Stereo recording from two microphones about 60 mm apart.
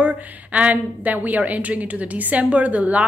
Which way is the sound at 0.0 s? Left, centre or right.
Right.